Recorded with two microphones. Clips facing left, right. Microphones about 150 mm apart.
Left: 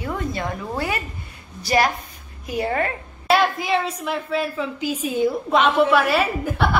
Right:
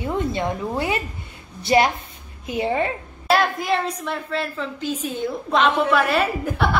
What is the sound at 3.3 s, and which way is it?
A woman's voice, centre (ahead or behind).